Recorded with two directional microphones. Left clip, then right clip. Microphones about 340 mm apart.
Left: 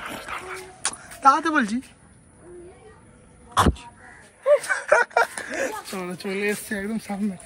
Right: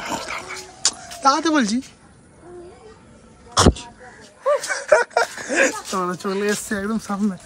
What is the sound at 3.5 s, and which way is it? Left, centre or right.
Speech, centre.